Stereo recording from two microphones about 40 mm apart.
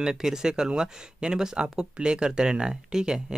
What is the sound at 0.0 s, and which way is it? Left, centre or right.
Speech, centre.